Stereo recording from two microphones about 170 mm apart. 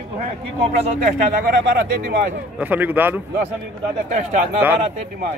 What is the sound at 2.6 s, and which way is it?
Speech, 10° right (ahead or behind).